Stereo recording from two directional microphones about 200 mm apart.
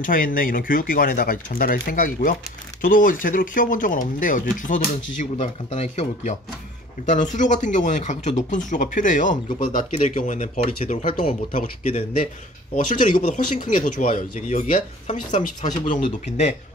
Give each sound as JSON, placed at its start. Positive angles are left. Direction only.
{"t": 0.0, "sound": "speech", "side_deg": 45}